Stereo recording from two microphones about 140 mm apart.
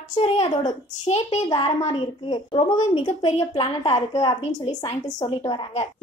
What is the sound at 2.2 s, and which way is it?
Speech, 35° left (ahead or behind).